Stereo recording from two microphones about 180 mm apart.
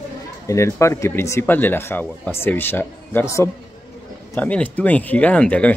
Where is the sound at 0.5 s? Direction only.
15° left (ahead or behind).